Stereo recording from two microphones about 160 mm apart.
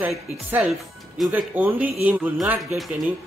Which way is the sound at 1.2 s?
15° right (ahead or behind).